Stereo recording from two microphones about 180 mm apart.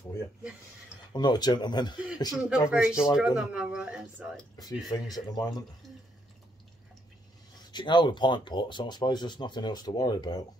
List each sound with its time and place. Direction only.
1.1 s speech: 25° left (ahead or behind)
2.3 s speech: 5° right (ahead or behind)
4.6 s speech: 20° left (ahead or behind)
7.7 s speech: 25° left (ahead or behind)